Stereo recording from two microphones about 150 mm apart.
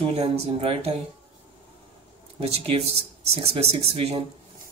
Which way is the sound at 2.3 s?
40° right (ahead or behind).